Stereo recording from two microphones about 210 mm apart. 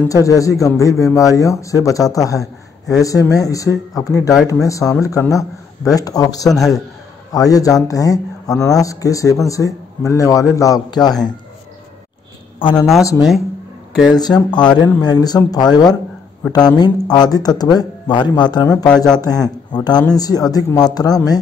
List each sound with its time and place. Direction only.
0.1 s speech: 15° left (ahead or behind)
12.7 s speech: centre (ahead or behind)
13.0 s speech: 15° left (ahead or behind)